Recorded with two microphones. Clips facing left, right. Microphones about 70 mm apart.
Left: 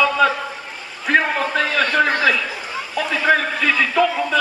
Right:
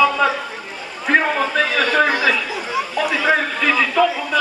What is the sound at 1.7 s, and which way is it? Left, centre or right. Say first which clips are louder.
Speech: even; centre.